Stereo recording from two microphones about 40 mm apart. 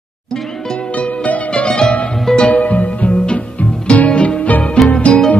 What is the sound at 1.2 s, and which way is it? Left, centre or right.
Music, left.